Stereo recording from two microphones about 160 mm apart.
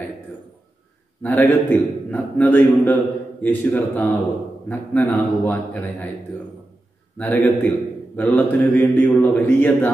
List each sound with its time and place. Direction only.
1.2 s a man's voice: 10° left (ahead or behind)
7.2 s a man's voice: 10° left (ahead or behind)